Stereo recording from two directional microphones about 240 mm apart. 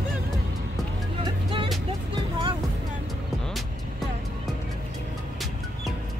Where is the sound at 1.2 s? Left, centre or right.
Right.